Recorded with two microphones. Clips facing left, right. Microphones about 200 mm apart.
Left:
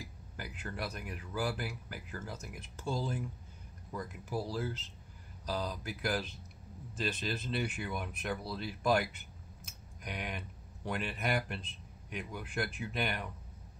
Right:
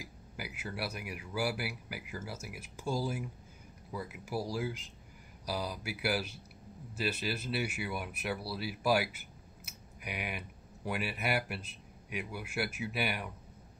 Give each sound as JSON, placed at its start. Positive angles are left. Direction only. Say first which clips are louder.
{"t": 0.0, "sound": "speech", "louder": "right 1 dB", "side_deg": -10}